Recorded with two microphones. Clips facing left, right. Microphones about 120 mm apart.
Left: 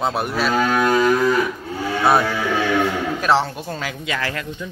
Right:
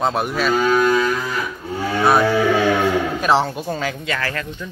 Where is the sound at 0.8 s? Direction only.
60° left (ahead or behind).